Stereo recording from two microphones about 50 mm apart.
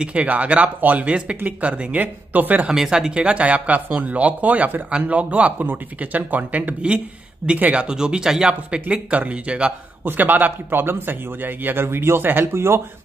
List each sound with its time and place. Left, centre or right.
0.0 s speech: right
2.7 s speech: centre; by 7.8 s right
7.8 s speech: centre
10.0 s a man's voice: right